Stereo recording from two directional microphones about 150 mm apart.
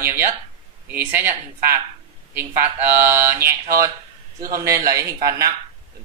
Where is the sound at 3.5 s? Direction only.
20° right (ahead or behind).